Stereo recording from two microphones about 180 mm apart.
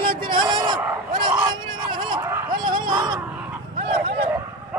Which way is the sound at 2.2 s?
15° right (ahead or behind).